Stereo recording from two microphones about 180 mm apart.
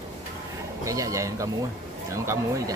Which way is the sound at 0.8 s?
20° right (ahead or behind).